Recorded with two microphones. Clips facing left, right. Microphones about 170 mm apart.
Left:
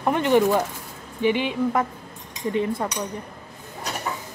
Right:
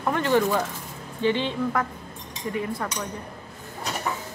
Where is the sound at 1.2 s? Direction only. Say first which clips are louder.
Left 2 dB; 15° left (ahead or behind).